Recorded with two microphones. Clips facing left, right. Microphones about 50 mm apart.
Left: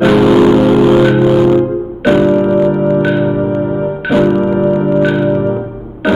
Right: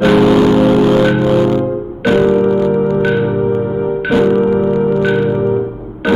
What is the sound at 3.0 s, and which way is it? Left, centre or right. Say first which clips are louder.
Music: left 1 dB; centre.